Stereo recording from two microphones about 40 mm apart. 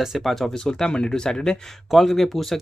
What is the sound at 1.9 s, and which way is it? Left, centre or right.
Speech, centre.